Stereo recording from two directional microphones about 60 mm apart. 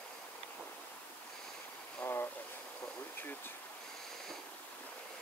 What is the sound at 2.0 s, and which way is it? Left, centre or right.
Vehicle, left.